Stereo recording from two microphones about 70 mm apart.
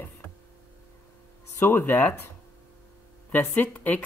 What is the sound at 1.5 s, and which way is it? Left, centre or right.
Speech, left.